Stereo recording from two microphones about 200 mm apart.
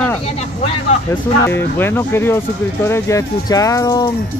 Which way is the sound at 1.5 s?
10° left (ahead or behind).